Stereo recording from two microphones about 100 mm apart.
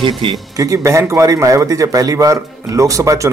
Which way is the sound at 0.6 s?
30° right (ahead or behind).